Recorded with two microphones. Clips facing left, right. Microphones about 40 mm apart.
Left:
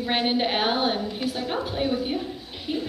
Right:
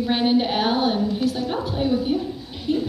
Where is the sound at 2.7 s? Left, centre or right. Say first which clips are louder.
Right 6 dB; centre.